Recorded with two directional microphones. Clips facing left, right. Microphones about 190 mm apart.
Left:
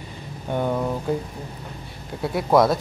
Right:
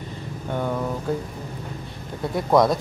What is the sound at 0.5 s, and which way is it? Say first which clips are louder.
Speech: left 2 dB; 15° left (ahead or behind).